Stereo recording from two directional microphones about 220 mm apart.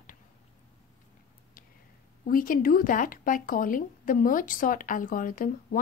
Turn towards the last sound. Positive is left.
turn(degrees=40)  # may be behind; listen again after turning